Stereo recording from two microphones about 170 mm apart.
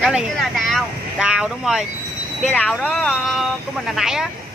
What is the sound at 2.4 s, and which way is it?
Speech, 5° left (ahead or behind).